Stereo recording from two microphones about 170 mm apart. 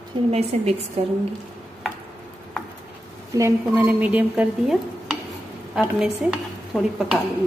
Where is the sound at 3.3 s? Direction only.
15° right (ahead or behind).